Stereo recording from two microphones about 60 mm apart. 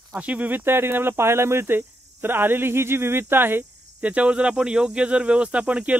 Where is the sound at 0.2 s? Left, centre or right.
Right.